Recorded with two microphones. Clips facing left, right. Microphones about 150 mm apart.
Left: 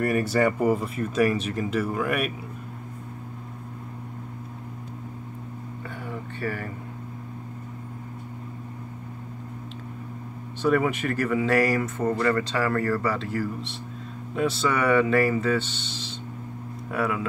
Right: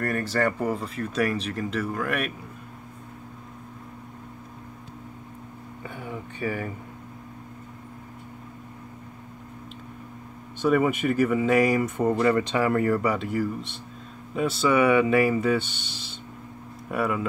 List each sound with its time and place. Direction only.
0.0 s speech: 10° left (ahead or behind)
6.0 s a sound: 15° right (ahead or behind)
10.7 s speech: 5° right (ahead or behind)
14.3 s speech: 5° right (ahead or behind)
16.9 s speech: 5° right (ahead or behind)